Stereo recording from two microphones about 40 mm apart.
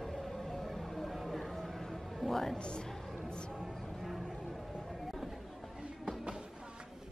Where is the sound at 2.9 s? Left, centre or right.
Centre.